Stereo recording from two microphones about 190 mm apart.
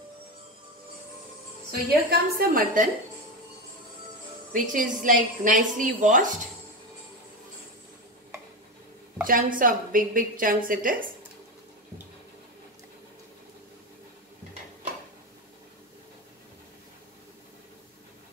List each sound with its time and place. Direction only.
1.7 s a woman's voice: 55° right (ahead or behind)
4.5 s a woman's voice: 45° right (ahead or behind)
9.2 s a woman's voice: 45° right (ahead or behind)